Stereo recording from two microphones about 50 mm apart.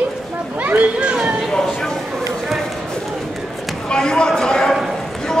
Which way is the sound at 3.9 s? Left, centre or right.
Centre.